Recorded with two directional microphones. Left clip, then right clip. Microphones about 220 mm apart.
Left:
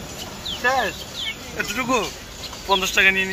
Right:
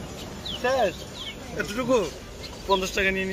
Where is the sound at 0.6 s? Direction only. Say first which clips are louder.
Left 3 dB; 20° right (ahead or behind).